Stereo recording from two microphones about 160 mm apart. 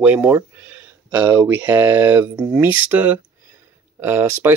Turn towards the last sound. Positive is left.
turn(degrees=-15)  # may be behind; listen again after turning